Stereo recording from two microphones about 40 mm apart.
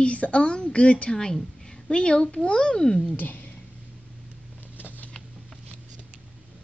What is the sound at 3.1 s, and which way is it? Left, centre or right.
Speech, left.